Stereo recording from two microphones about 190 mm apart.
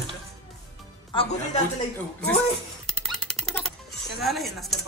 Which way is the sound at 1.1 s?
30° left (ahead or behind).